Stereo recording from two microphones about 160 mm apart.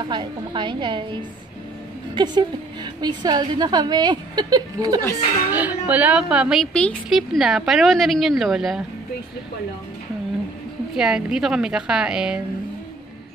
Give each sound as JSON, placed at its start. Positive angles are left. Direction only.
{"t": 0.1, "sound": "a woman's voice", "side_deg": -30}
{"t": 5.5, "sound": "a woman's voice", "side_deg": -10}
{"t": 11.0, "sound": "a woman's voice", "side_deg": -5}